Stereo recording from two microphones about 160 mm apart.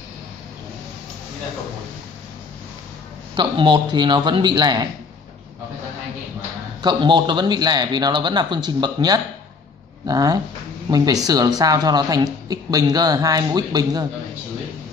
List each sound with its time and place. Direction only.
3.3 s a woman's voice: 30° right (ahead or behind)
6.8 s a woman's voice: 30° right (ahead or behind)